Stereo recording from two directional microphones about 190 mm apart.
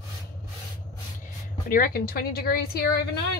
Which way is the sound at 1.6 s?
50° left (ahead or behind).